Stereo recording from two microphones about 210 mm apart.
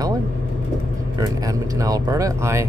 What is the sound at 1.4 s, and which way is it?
Speech, 15° right (ahead or behind).